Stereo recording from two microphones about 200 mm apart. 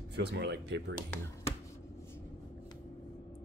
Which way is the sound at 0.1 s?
60° right (ahead or behind).